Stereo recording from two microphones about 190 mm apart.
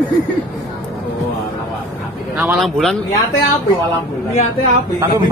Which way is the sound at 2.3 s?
5° right (ahead or behind).